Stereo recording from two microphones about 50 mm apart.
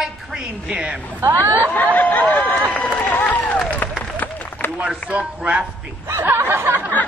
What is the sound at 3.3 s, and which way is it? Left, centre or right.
Run, left.